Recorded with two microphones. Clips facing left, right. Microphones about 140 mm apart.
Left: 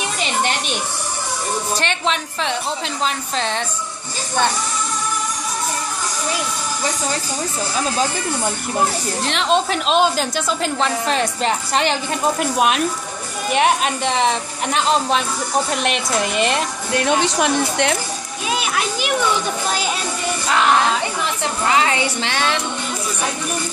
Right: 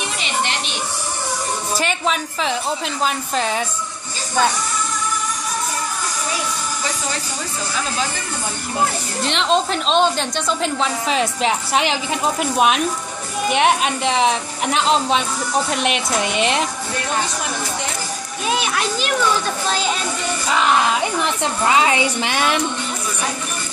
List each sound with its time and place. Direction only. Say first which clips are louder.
1.8 s a woman's voice: right 1 dB; 5° right (ahead or behind)
9.2 s a woman's voice: even; centre (ahead or behind)
17.0 s speech: left 7 dB; 75° left (ahead or behind)
18.5 s a woman's voice: right 1 dB; 5° left (ahead or behind)
18.9 s a child's voice: even; 15° left (ahead or behind)
20.4 s a woman's voice: left 1 dB; centre (ahead or behind)
21.2 s a woman's voice: right 2 dB; 20° right (ahead or behind)